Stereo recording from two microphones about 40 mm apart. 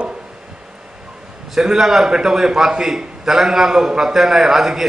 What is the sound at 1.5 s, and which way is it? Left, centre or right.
A man's voice, centre.